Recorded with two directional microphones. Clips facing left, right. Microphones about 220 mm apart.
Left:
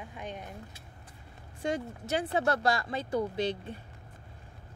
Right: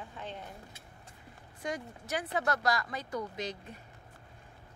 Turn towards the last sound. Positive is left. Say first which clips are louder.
# left 7 dB
turn(degrees=30)  # may be behind; listen again after turning